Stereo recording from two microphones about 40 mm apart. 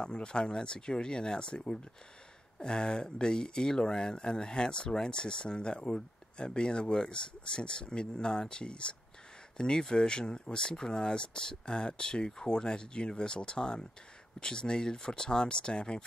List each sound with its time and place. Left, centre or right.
0.0 s speech: left